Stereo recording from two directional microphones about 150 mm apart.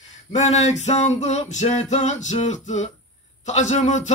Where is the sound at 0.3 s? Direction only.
50° left (ahead or behind).